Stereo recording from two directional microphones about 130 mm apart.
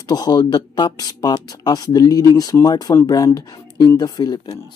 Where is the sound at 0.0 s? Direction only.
30° left (ahead or behind).